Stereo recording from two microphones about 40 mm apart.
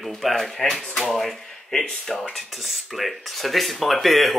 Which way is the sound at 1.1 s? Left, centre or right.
Centre.